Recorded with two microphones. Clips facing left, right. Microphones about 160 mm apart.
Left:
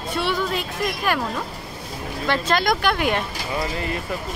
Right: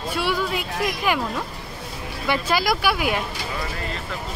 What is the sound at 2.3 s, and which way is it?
Speech, 5° right (ahead or behind).